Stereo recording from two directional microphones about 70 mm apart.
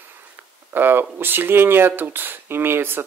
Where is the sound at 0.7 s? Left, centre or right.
Right.